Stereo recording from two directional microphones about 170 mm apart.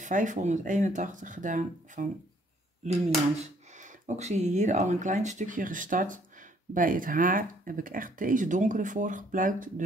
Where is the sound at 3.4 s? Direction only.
45° right (ahead or behind).